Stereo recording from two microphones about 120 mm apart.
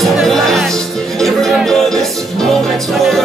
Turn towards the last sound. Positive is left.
turn(degrees=0)  # may be behind; listen again after turning